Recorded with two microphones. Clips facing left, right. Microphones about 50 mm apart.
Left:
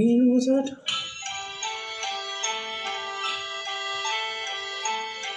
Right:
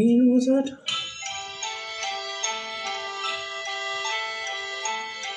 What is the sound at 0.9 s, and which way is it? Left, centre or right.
Music, left.